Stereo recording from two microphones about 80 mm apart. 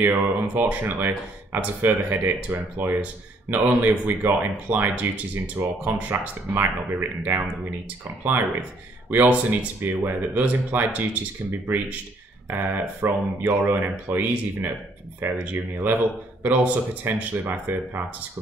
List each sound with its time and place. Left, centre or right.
0.0 s speech: right